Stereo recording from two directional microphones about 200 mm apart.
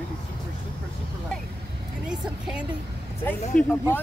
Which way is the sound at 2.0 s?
5° right (ahead or behind).